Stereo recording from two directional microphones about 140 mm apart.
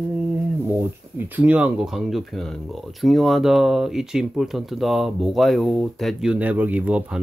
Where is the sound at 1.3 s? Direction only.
10° right (ahead or behind).